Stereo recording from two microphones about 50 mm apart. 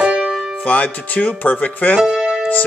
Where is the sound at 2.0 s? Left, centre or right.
Centre.